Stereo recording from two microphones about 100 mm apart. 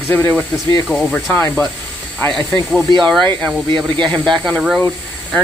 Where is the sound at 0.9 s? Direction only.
10° right (ahead or behind).